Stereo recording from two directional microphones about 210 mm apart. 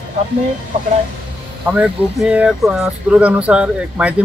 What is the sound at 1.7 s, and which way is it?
Speech, 5° right (ahead or behind).